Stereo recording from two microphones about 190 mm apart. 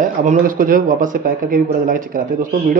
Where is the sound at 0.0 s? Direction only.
40° right (ahead or behind).